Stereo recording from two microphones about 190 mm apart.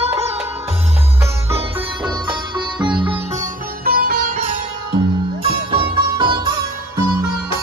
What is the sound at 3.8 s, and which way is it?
Sitar, 50° right (ahead or behind).